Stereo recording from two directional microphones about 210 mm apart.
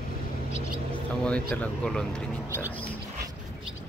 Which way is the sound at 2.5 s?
10° right (ahead or behind).